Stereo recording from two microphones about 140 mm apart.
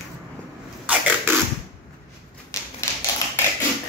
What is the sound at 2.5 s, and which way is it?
Typewriter, 25° left (ahead or behind).